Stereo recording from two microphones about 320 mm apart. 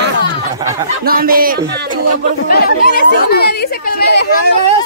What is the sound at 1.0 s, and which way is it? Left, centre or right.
Speech, right.